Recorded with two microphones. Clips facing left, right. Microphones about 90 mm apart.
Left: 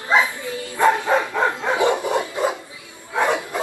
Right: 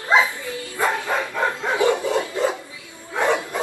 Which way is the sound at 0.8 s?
25° left (ahead or behind).